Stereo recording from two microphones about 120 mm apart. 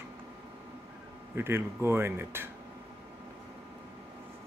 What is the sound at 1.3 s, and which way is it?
Speech, 20° right (ahead or behind).